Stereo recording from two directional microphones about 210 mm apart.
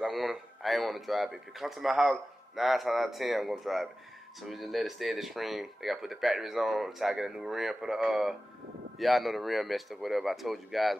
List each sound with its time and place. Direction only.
0.0 s speech: centre (ahead or behind)